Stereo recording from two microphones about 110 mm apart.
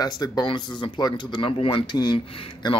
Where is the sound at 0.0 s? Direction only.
35° left (ahead or behind).